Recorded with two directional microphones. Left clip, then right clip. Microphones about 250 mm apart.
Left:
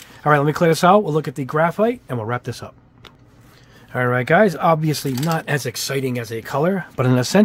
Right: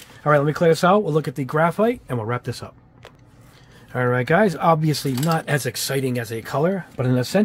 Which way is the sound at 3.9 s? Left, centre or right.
Centre.